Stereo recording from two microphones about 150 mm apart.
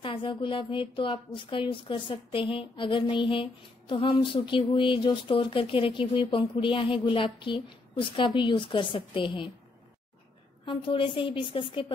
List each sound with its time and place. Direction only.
0.0 s a woman's voice: 35° left (ahead or behind)
10.6 s a woman's voice: 35° left (ahead or behind)